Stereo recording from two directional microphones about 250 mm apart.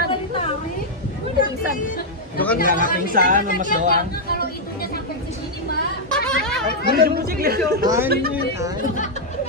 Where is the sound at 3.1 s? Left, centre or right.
Right.